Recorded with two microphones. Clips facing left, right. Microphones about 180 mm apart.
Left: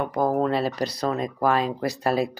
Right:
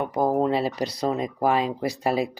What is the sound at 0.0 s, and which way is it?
Speech, 15° right (ahead or behind).